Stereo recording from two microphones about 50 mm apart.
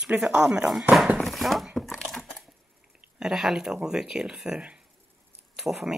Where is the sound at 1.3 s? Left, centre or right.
Centre.